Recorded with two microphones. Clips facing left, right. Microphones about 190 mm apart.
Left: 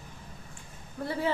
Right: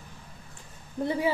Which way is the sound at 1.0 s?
15° right (ahead or behind).